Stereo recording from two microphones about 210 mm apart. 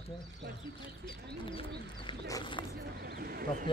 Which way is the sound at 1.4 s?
25° left (ahead or behind).